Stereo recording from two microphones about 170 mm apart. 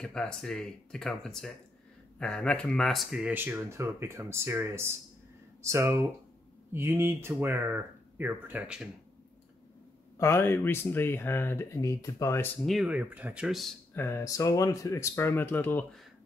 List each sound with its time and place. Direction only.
0.0 s speech: 5° left (ahead or behind)
10.1 s speech: 15° left (ahead or behind)
12.6 s speech: 5° right (ahead or behind)
13.9 s speech: 15° left (ahead or behind)